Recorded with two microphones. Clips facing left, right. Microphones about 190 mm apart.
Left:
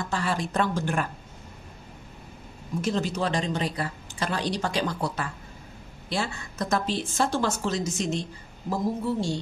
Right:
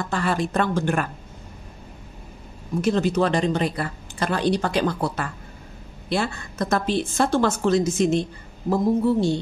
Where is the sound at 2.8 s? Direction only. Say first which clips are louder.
Right 7 dB; 60° right (ahead or behind).